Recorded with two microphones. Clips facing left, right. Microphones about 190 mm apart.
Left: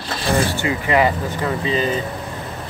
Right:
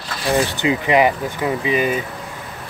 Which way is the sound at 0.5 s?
20° right (ahead or behind).